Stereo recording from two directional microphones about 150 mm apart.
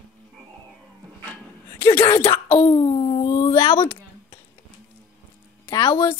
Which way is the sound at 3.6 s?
35° left (ahead or behind).